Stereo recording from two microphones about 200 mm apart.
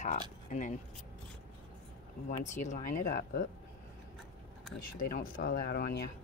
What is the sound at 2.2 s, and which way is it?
Speech, 40° left (ahead or behind).